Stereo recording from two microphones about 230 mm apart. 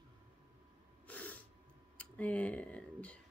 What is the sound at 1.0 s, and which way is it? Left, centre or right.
Snort, centre.